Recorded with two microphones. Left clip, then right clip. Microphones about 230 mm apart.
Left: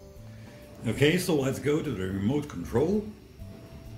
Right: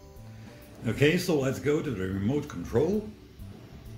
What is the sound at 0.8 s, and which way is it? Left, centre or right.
Speech, centre.